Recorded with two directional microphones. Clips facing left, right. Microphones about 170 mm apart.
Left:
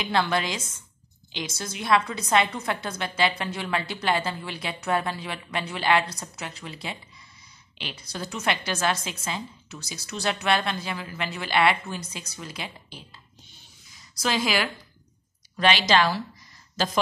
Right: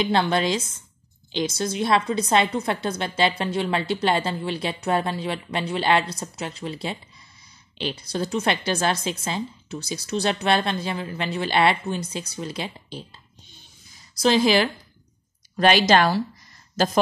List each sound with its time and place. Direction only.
0.0 s a woman's voice: 30° right (ahead or behind)
14.2 s a woman's voice: 30° right (ahead or behind)
15.5 s a woman's voice: 45° right (ahead or behind)